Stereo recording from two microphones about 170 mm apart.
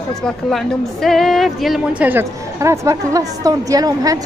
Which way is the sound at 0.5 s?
Centre (ahead or behind).